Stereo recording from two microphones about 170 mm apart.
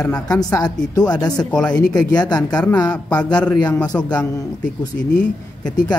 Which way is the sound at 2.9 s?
5° left (ahead or behind).